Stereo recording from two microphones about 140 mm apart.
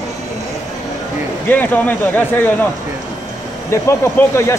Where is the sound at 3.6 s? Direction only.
20° left (ahead or behind).